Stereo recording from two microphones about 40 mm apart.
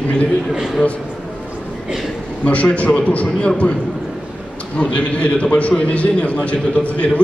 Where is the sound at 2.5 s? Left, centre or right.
Left.